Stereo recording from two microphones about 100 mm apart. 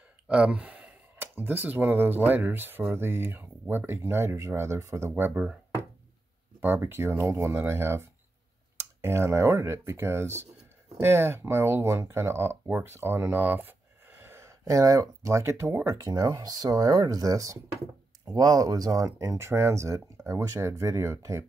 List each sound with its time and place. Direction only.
0.3 s speech: 10° right (ahead or behind)
6.6 s speech: 20° right (ahead or behind)
14.2 s a sound: 25° right (ahead or behind)
14.6 s speech: 35° right (ahead or behind)